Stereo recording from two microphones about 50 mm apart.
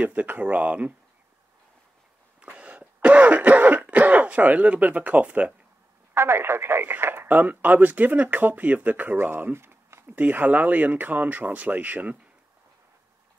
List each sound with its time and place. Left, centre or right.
0.0 s speech: right
2.4 s throat clearing: right
6.1 s speech: right
10.0 s speech: right